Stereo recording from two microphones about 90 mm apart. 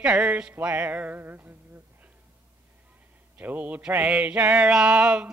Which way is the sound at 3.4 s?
20° right (ahead or behind).